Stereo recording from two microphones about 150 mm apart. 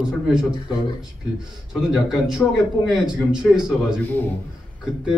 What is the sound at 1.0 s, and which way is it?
A man's voice, 5° right (ahead or behind).